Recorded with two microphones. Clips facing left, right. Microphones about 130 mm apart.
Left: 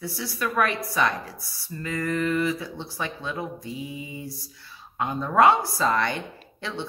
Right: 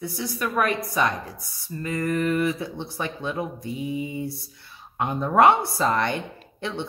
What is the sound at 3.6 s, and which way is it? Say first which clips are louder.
Mantra: right 4 dB; 25° left (ahead or behind).